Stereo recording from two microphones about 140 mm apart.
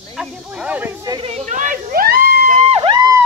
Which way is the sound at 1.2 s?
60° right (ahead or behind).